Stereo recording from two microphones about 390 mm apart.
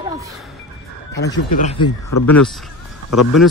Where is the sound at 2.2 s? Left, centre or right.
Centre.